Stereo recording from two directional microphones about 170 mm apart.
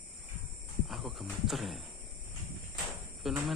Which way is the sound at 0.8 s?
Centre (ahead or behind).